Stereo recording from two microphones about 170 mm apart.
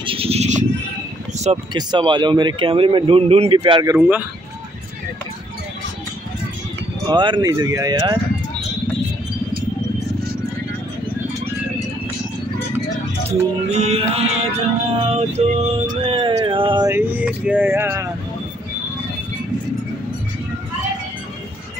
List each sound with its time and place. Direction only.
0.0 s music: 35° right (ahead or behind)
1.7 s speech: 25° right (ahead or behind)
7.1 s speech: 25° right (ahead or behind)
13.3 s music: 40° right (ahead or behind)
16.9 s speech: 10° right (ahead or behind)